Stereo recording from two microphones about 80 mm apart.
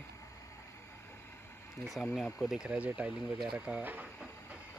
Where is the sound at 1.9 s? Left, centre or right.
Centre.